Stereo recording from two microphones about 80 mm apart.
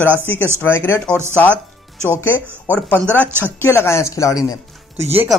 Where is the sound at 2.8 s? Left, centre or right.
Centre.